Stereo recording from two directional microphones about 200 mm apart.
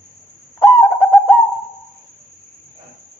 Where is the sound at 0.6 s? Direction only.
10° left (ahead or behind).